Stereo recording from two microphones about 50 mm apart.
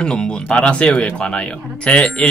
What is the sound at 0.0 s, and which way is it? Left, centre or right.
Speech, centre.